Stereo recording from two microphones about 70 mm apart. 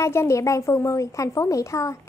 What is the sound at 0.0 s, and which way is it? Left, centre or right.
A child's voice, left.